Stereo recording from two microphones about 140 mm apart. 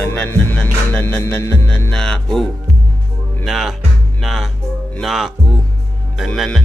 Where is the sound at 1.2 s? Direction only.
20° left (ahead or behind).